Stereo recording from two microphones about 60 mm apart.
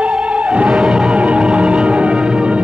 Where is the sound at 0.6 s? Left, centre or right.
Centre.